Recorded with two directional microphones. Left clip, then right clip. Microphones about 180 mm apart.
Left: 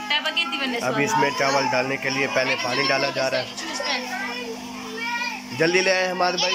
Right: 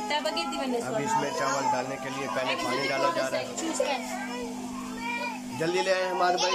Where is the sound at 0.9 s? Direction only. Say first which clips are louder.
Left 7 dB; 5° left (ahead or behind).